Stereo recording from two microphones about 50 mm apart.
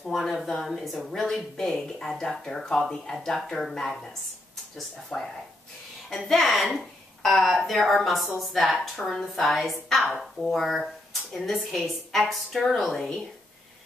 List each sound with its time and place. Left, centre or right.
0.0 s a woman's voice: centre
5.1 s speech: centre
6.0 s a woman's voice: centre